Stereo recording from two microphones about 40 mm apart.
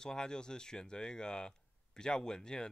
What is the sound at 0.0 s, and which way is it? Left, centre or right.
Speech, centre.